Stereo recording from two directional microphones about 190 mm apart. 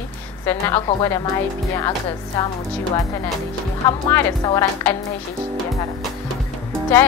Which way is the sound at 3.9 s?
15° left (ahead or behind).